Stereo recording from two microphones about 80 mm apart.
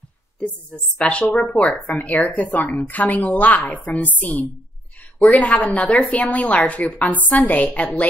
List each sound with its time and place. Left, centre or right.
0.4 s speech: centre